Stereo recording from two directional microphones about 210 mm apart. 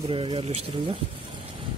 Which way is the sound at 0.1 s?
25° right (ahead or behind).